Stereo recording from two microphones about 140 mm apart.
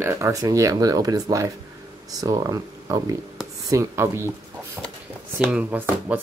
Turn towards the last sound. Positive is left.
turn(degrees=-10)  # may be behind; listen again after turning